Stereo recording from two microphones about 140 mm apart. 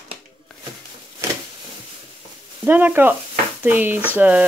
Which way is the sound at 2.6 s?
15° right (ahead or behind).